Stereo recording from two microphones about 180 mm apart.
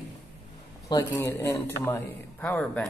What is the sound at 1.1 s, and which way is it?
A man's voice, 15° left (ahead or behind).